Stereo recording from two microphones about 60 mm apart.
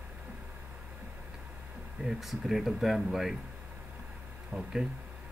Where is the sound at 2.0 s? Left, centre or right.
Centre.